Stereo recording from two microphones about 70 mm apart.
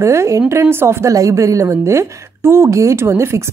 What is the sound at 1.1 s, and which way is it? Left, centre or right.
A woman's voice, right.